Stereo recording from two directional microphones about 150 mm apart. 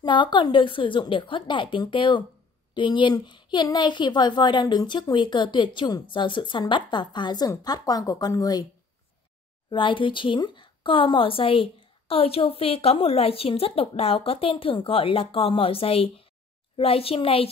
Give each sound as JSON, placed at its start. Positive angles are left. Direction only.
{"t": 0.0, "sound": "a woman's voice", "side_deg": 30}
{"t": 9.7, "sound": "a woman's voice", "side_deg": 35}